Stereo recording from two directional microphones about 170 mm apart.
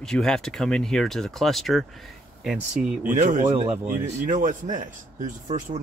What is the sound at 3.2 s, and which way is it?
A man's voice, 45° right (ahead or behind).